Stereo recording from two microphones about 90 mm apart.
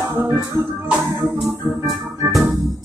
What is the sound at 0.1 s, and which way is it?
Music, 35° right (ahead or behind).